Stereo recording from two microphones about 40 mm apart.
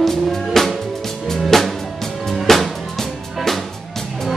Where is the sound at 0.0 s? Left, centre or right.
Centre.